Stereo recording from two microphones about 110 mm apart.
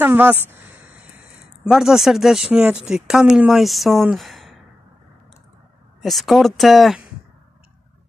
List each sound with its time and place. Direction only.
0.0 s speech: 20° right (ahead or behind)
1.6 s speech: 5° right (ahead or behind)
6.0 s speech: centre (ahead or behind)